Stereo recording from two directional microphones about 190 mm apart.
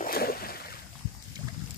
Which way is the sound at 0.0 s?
50° left (ahead or behind).